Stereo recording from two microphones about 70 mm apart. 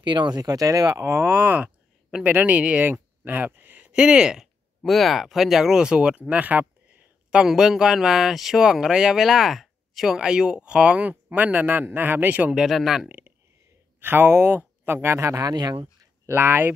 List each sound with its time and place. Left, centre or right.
0.0 s speech: right
1.2 s speech: right; by 4.5 s centre
4.8 s speech: centre; by 6.6 s right
6.9 s a sound: right
7.3 s speech: centre; by 12.5 s right
12.5 s speech: centre
13.9 s speech: right
15.7 s speech: right
16.3 s speech: right